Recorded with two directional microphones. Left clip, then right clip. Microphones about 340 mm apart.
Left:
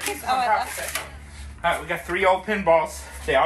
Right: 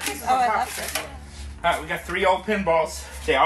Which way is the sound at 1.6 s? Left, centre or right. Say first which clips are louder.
Even; centre.